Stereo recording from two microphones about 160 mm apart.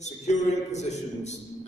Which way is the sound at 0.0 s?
45° left (ahead or behind).